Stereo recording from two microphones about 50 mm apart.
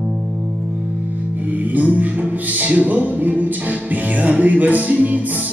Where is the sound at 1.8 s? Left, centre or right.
Right.